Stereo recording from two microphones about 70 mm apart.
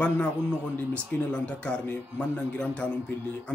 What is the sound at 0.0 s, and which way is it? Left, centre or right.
A man's voice, centre.